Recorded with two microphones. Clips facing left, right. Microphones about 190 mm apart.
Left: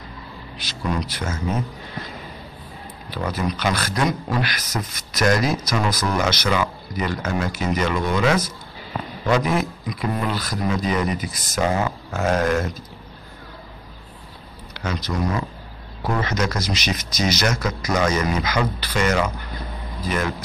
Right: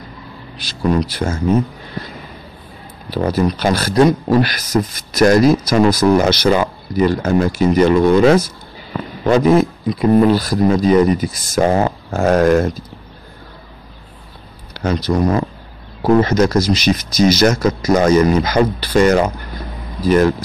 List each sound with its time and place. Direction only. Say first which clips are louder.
0.8 s speech: right 9 dB; 35° right (ahead or behind)
3.1 s speech: right 9 dB; 35° right (ahead or behind)
11.6 s speech: right 7 dB; 45° right (ahead or behind)
15.0 s speech: right 9 dB; 40° right (ahead or behind)